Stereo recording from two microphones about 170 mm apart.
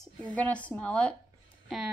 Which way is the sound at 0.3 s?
5° left (ahead or behind).